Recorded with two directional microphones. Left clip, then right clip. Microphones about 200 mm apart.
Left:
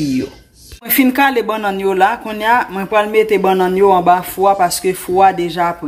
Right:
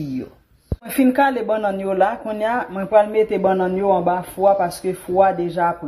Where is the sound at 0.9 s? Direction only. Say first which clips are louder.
Left 4 dB; 15° right (ahead or behind).